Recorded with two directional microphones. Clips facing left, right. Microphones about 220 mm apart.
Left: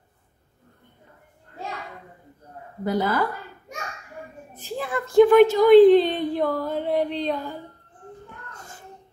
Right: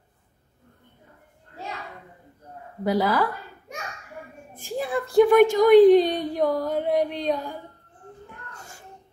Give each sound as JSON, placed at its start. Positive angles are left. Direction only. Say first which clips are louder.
{"t": 2.8, "sound": "a woman's voice", "louder": "right 1 dB", "side_deg": 0}
{"t": 4.6, "sound": "a woman's voice", "louder": "right 2 dB", "side_deg": -45}
{"t": 6.4, "sound": "a sound", "louder": "right 1 dB", "side_deg": -15}